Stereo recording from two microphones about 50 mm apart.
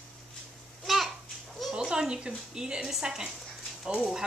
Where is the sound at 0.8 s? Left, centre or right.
Centre.